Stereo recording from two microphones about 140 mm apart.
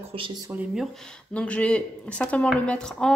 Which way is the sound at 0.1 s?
40° right (ahead or behind).